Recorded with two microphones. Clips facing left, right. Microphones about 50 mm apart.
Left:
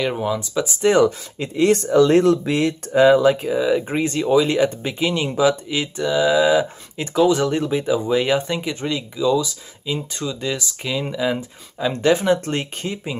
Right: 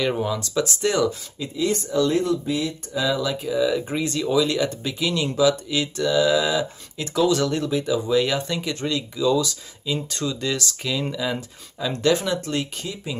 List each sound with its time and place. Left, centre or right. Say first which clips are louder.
0.0 s speech: left 2 dB; centre
0.9 s speech: left 6 dB; left
3.4 s speech: left 3 dB; left
12.4 s speech: left 2 dB; left